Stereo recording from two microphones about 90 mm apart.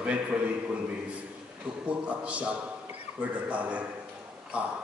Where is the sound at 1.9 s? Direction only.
15° right (ahead or behind).